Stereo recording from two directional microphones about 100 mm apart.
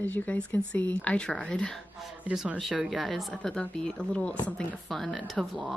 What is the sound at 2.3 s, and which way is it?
Speech, 5° right (ahead or behind).